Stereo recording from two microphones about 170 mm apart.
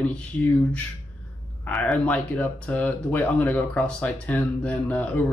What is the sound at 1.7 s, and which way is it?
Speech, 5° left (ahead or behind).